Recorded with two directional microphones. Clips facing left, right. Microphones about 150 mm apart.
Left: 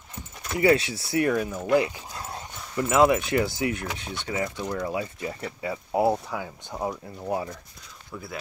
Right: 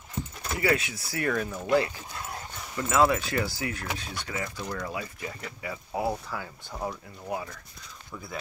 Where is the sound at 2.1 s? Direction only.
30° left (ahead or behind).